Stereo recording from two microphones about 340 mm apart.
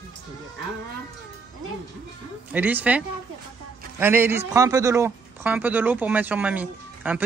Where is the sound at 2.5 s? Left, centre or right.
Centre.